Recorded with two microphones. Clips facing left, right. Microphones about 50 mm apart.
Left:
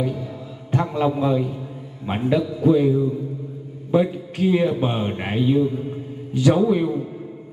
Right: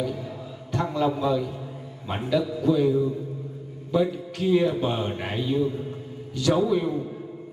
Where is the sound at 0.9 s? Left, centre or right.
Left.